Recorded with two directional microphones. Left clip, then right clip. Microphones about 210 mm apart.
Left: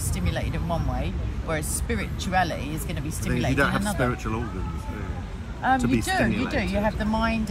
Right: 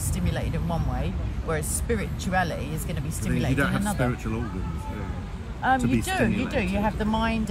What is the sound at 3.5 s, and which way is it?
Speech, 20° left (ahead or behind).